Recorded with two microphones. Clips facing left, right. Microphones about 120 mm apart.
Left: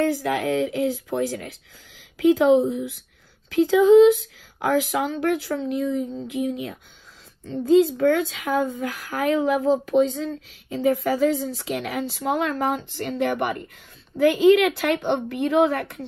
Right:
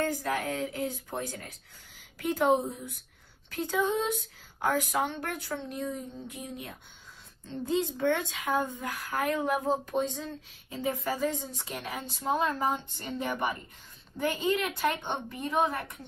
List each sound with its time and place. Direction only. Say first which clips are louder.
0.5 s speech: left 10 dB; 90° left